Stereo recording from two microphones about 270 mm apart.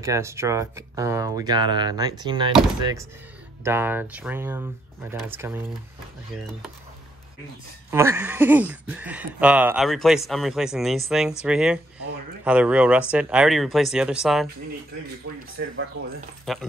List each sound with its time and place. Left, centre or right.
0.0 s speech: centre
7.9 s speech: centre
15.5 s speech: right
16.5 s speech: centre